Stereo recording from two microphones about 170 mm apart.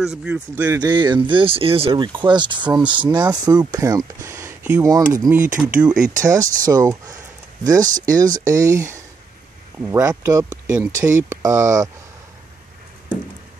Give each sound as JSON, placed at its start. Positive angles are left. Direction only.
{"t": 0.0, "sound": "speech", "side_deg": -5}
{"t": 0.7, "sound": "speech", "side_deg": -25}
{"t": 5.3, "sound": "speech", "side_deg": -10}
{"t": 6.1, "sound": "speech", "side_deg": -20}